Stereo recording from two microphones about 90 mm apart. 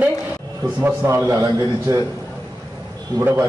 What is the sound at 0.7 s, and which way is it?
A man's voice, 25° right (ahead or behind).